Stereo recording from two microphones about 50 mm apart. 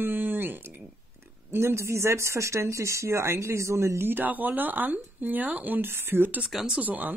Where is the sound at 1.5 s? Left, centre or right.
Right.